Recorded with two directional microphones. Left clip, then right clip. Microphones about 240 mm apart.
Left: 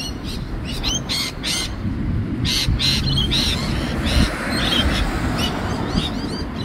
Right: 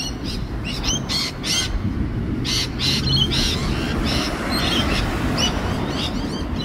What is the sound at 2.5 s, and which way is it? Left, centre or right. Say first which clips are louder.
Bird: left 2 dB; left.